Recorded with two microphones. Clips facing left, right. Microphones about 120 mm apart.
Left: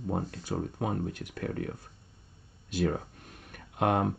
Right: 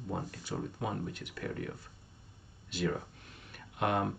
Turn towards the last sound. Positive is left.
turn(degrees=50)  # may be behind; listen again after turning